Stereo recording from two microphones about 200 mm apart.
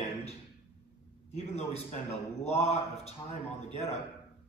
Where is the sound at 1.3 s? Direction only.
30° left (ahead or behind).